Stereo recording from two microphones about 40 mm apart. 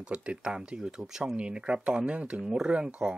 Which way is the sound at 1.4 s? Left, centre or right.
Right.